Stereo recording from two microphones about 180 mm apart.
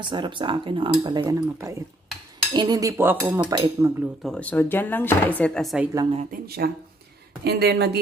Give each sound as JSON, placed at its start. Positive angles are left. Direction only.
{"t": 0.0, "sound": "speech", "side_deg": -25}
{"t": 3.3, "sound": "speech", "side_deg": -25}
{"t": 4.2, "sound": "speech", "side_deg": 5}
{"t": 6.4, "sound": "speech", "side_deg": -60}